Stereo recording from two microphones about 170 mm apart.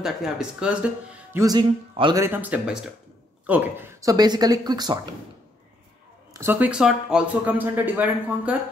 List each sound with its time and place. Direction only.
0.0 s speech: 5° right (ahead or behind)
1.4 s speech: 25° right (ahead or behind)
2.2 s speech: 10° right (ahead or behind)
6.3 s speech: 15° right (ahead or behind)